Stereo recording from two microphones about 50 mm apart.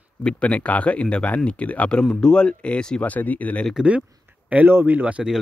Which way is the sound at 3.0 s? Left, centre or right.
Left.